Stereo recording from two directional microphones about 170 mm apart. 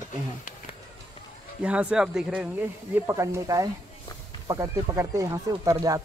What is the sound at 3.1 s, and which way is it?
Speech, 15° right (ahead or behind).